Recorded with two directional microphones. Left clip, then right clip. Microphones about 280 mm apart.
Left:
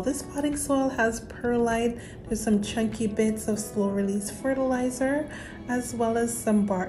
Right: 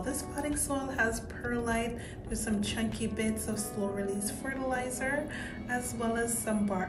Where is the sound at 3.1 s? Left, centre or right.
Centre.